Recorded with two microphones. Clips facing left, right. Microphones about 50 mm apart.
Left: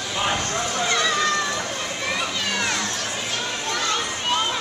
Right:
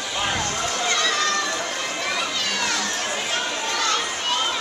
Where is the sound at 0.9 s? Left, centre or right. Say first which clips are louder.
Left 1 dB; centre.